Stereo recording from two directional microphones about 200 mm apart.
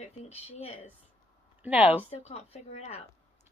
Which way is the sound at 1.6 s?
10° right (ahead or behind).